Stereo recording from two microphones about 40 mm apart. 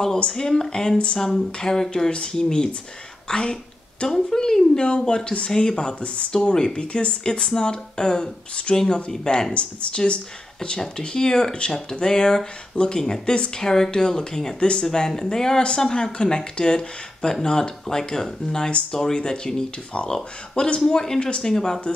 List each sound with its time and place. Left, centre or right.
0.3 s speech: centre
0.9 s speech: left
1.6 s a woman's voice: centre
13.6 s speech: centre
18.7 s speech: left
20.5 s speech: left